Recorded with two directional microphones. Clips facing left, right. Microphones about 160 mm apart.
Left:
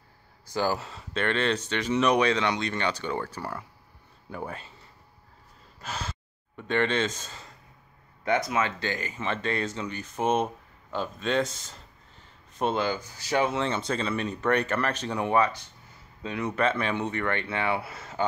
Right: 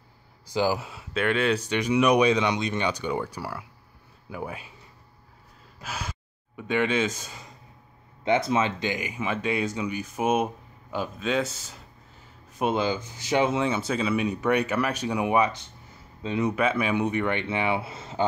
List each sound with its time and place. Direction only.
0.5 s speech: 15° right (ahead or behind)
5.8 s gasp: 10° right (ahead or behind)
8.3 s speech: 25° right (ahead or behind)
13.7 s speech: 5° right (ahead or behind)
16.5 s speech: 10° right (ahead or behind)